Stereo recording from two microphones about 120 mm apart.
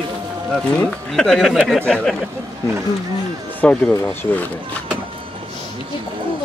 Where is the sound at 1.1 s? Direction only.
5° left (ahead or behind).